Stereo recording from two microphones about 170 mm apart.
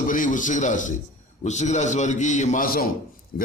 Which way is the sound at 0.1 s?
50° left (ahead or behind).